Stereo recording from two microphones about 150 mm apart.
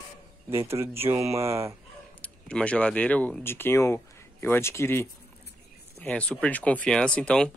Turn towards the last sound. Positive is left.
turn(degrees=5)  # may be behind; listen again after turning